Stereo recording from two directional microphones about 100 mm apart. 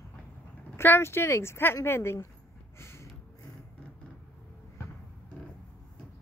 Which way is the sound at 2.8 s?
25° left (ahead or behind).